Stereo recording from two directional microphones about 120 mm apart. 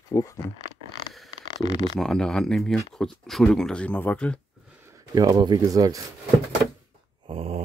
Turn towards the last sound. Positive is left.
turn(degrees=-55)  # may be behind; listen again after turning